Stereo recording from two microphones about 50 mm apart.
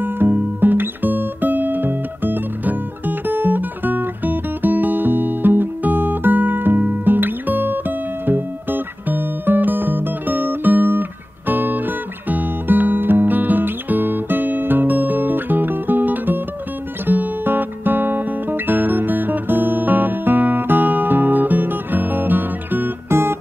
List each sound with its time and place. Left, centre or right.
0.0 s music: right
17.0 s guitar: right
23.0 s guitar: right